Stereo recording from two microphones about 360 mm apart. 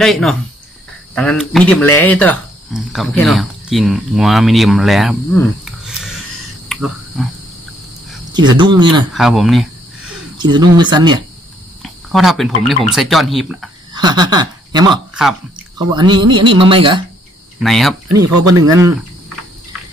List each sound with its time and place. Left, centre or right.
0.0 s speech: centre
6.7 s cricket: centre
8.5 s speech: centre
9.1 s speech: centre
10.3 s speech: centre
11.8 s speech: centre
13.9 s speech: centre
17.6 s speech: centre
18.3 s speech: right
18.8 s cricket: centre